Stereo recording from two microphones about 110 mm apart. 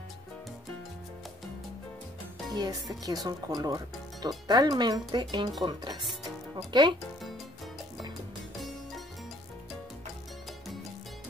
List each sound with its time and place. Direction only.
2.5 s speech: 40° right (ahead or behind)